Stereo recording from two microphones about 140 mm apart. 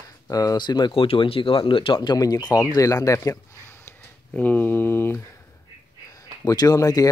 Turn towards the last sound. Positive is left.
turn(degrees=25)  # may be behind; listen again after turning